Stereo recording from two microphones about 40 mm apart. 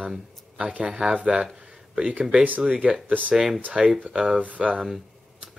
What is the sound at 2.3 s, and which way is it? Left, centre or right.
Speech, right.